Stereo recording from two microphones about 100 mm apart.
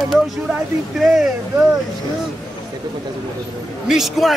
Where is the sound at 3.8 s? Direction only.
5° right (ahead or behind).